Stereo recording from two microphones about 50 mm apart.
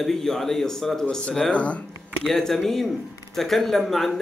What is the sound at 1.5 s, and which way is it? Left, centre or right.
Speech, left.